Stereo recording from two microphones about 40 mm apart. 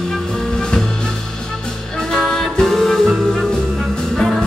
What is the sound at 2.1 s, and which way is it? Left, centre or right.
Music, centre.